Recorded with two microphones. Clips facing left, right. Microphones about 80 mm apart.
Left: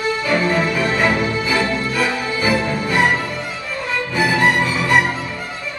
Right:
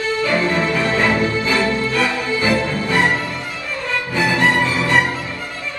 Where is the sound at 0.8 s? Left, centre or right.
Centre.